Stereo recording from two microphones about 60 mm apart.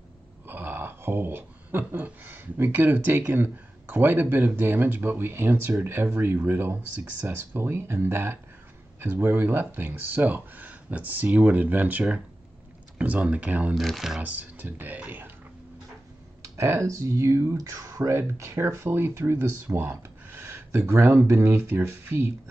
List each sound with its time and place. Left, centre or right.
0.5 s speech: right
13.7 s speech: centre
14.2 s speech: right
16.5 s speech: right
17.6 s speech: right
18.1 s speech: right